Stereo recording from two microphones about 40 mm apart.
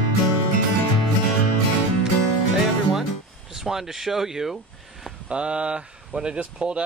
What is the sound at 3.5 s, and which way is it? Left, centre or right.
Speech, centre.